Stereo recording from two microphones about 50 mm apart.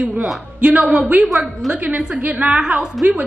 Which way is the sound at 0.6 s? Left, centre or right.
Right.